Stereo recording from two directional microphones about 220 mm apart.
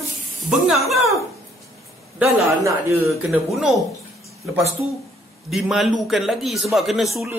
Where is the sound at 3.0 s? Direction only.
Centre (ahead or behind).